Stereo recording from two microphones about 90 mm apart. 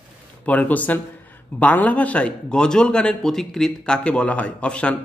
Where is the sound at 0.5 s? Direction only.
15° left (ahead or behind).